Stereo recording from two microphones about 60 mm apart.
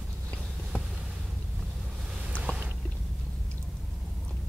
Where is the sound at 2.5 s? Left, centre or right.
Left.